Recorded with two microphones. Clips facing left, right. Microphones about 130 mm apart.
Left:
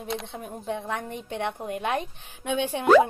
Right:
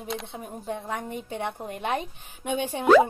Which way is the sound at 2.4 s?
10° right (ahead or behind).